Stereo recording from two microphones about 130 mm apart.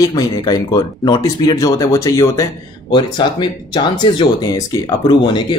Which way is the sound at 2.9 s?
40° left (ahead or behind).